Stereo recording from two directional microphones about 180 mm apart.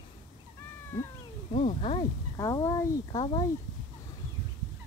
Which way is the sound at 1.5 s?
35° left (ahead or behind).